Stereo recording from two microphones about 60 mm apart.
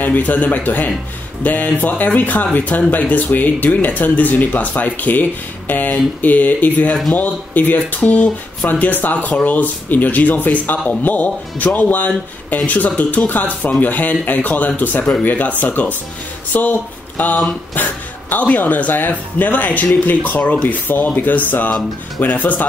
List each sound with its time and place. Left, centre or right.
0.0 s speech: left